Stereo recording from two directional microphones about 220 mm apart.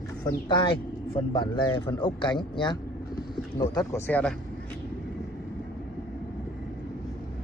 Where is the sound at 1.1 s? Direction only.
20° left (ahead or behind).